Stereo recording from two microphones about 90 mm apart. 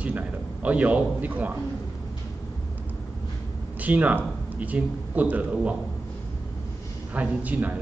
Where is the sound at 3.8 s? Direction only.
15° right (ahead or behind).